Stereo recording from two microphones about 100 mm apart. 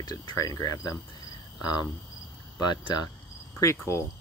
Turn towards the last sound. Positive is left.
turn(degrees=30)  # may be behind; listen again after turning